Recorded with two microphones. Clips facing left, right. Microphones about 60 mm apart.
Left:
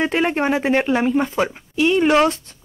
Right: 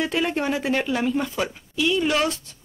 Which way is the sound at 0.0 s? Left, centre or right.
Left.